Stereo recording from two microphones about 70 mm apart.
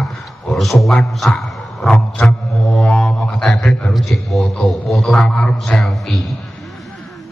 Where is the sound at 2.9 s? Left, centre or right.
Centre.